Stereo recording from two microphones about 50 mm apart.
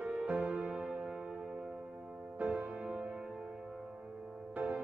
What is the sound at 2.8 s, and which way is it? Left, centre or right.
Music, centre.